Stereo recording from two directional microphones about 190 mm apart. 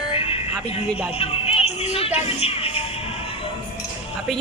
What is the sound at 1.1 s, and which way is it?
Music, 30° left (ahead or behind).